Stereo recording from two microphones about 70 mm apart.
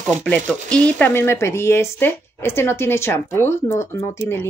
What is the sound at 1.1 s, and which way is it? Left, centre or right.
Speech, left.